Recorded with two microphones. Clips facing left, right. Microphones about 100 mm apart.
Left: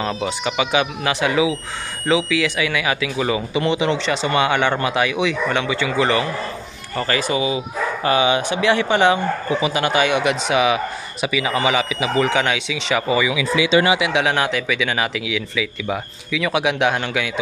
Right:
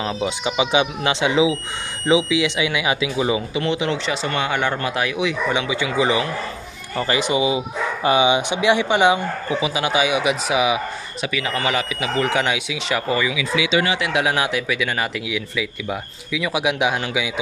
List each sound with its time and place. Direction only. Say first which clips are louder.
0.0 s speech: left 1 dB; 15° right (ahead or behind)
3.5 s speech: left 3 dB; centre (ahead or behind)